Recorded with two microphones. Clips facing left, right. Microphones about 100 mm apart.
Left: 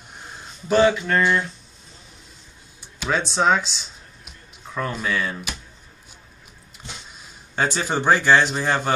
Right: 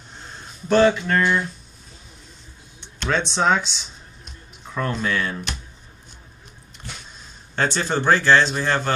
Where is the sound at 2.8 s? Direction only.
5° left (ahead or behind).